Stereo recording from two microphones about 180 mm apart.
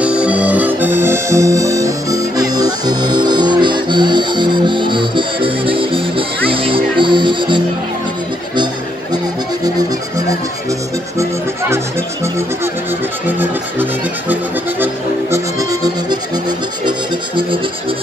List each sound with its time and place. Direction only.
0.0 s music: 5° right (ahead or behind); by 7.6 s 25° right (ahead or behind)
15.3 s music: 20° right (ahead or behind)